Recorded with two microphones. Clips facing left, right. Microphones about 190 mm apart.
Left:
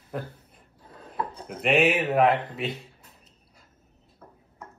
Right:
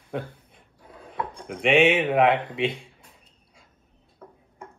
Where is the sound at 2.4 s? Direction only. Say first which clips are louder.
Right 5 dB; 30° right (ahead or behind).